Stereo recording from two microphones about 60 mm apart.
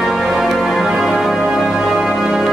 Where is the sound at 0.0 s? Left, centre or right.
Centre.